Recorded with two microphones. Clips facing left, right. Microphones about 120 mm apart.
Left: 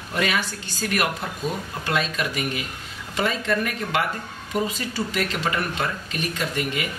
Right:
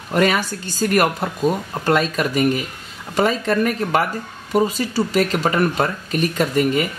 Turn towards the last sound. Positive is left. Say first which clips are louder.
# right 9 dB
turn(degrees=-45)  # may be behind; listen again after turning